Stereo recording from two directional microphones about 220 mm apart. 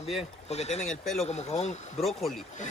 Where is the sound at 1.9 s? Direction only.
Centre (ahead or behind).